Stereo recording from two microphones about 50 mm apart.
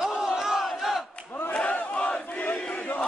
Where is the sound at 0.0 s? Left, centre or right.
Centre.